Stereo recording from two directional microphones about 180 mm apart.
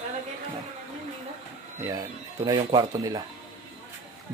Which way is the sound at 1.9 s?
20° right (ahead or behind).